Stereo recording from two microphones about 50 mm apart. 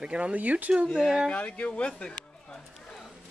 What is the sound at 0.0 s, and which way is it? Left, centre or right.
Speech, right.